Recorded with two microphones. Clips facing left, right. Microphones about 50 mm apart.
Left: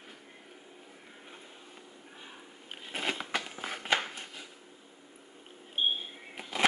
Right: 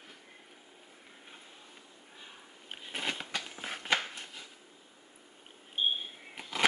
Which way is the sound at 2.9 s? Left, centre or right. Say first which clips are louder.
Left 3 dB; centre.